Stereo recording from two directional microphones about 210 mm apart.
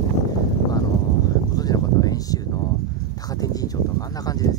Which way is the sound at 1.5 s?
15° left (ahead or behind).